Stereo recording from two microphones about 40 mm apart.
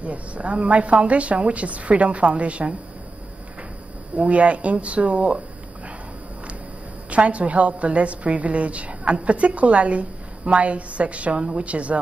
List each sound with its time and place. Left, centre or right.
0.0 s a woman's voice: right
4.2 s a woman's voice: right
7.1 s a woman's voice: right